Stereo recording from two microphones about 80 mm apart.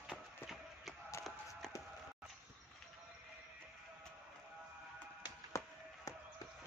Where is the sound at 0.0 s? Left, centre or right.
Centre.